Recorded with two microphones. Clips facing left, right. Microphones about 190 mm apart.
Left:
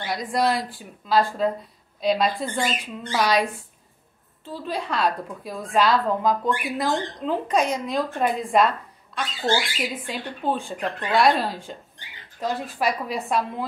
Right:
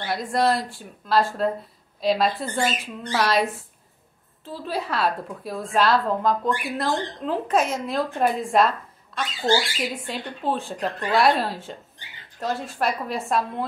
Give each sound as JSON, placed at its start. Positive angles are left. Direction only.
{"t": 0.0, "sound": "a woman's voice", "side_deg": 0}
{"t": 4.6, "sound": "a woman's voice", "side_deg": -5}